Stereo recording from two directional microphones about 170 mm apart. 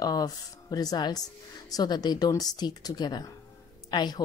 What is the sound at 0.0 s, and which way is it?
Speech, 20° left (ahead or behind).